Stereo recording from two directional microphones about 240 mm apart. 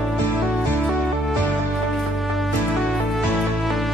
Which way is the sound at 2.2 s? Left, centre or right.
Centre.